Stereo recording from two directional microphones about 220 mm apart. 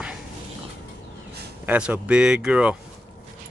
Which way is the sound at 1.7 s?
5° right (ahead or behind).